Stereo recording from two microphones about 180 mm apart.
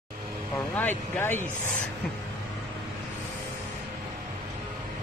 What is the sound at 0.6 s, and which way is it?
Speech, 10° left (ahead or behind).